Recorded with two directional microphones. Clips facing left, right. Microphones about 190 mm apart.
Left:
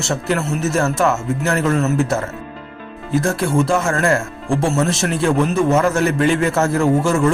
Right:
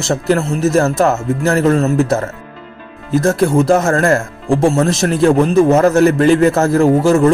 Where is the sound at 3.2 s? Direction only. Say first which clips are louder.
Right 5 dB; 40° right (ahead or behind).